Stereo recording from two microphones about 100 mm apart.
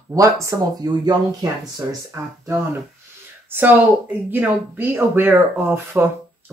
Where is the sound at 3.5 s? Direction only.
20° right (ahead or behind).